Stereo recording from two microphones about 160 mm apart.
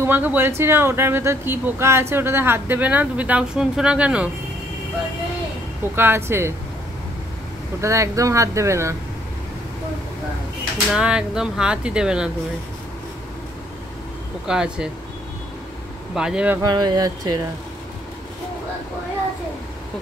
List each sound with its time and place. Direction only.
0.0 s speech: 15° right (ahead or behind)
5.9 s speech: 15° right (ahead or behind)
7.8 s speech: 20° right (ahead or behind)
10.9 s speech: 5° right (ahead or behind)
14.5 s speech: 5° right (ahead or behind)
16.2 s speech: 5° right (ahead or behind)
16.6 s speech: 25° right (ahead or behind)